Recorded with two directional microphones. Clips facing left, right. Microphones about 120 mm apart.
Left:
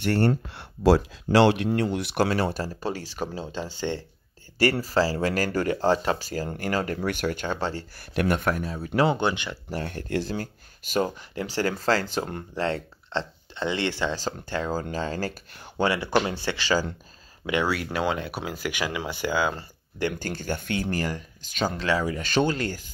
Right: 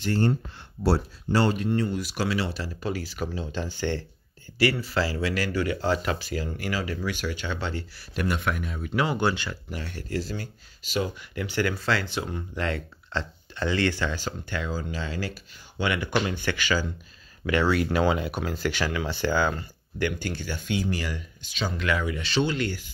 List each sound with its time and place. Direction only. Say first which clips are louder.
0.0 s speech: left 2 dB; 65° left (ahead or behind); by 3.5 s 35° left (ahead or behind)
3.5 s speech: right 1 dB; 20° left (ahead or behind)
4.6 s speech: left 2 dB; 40° left (ahead or behind)
8.1 s speech: left 4 dB; 60° left (ahead or behind)
8.4 s speech: left 3 dB; 40° left (ahead or behind); by 9.6 s 20° left (ahead or behind)
9.7 s speech: left 6 dB; 45° left (ahead or behind)
11.3 s speech: even; 35° left (ahead or behind)
12.5 s speech: left 4 dB; 30° left (ahead or behind)
14.2 s speech: left 3 dB; 35° left (ahead or behind)
15.8 s speech: left 3 dB; 30° left (ahead or behind)
17.5 s speech: right 2 dB; 15° left (ahead or behind)
17.7 s speech: right 4 dB; centre (ahead or behind)
18.4 s speech: right 2 dB; 10° left (ahead or behind)
19.5 s speech: right 3 dB; 30° left (ahead or behind)